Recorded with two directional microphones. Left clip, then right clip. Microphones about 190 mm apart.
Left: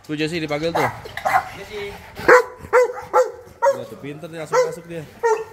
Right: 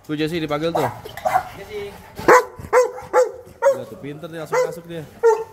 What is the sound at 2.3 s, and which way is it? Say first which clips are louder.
Dog: even; 70° right (ahead or behind).